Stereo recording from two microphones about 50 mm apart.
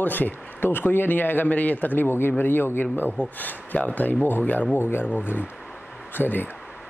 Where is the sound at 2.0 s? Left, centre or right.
Left.